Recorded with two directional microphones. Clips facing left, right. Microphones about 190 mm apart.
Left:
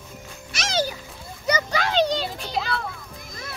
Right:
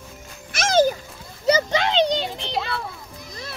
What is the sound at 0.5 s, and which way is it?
Speech, 50° right (ahead or behind).